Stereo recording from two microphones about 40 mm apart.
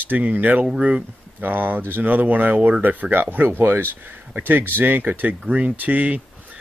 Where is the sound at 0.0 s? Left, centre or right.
Right.